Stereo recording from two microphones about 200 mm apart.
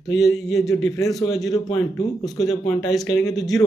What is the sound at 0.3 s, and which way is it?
A man's voice, 15° left (ahead or behind).